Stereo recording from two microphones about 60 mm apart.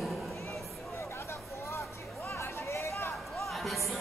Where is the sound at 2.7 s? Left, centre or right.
Left.